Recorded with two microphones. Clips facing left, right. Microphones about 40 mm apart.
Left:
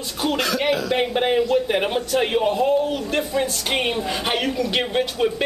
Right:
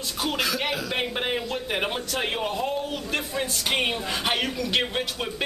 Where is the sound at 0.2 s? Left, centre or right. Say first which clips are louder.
Left 5 dB; centre.